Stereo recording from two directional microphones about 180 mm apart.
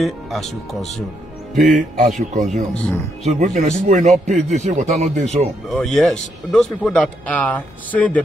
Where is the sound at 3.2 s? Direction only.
40° right (ahead or behind).